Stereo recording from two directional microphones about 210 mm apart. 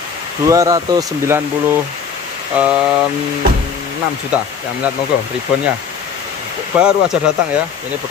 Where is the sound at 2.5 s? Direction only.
5° right (ahead or behind).